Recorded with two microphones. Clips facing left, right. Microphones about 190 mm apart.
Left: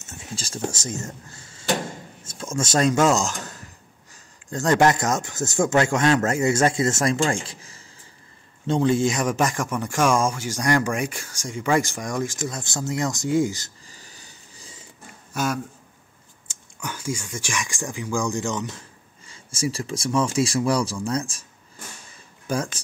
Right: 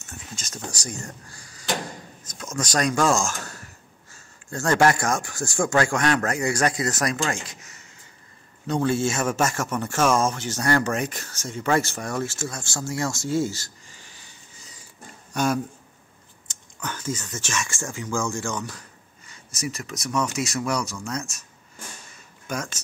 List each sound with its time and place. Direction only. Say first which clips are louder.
0.0 s a man's voice: left 4 dB; 25° left (ahead or behind)
13.8 s a sound: left 2 dB; 40° left (ahead or behind)
15.3 s a man's voice: right 2 dB; centre (ahead or behind); by 21.5 s 30° left (ahead or behind)
22.5 s speech: left 5 dB; 30° left (ahead or behind)